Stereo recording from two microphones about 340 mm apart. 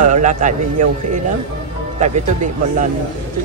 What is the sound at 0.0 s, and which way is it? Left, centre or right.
A man's voice, right.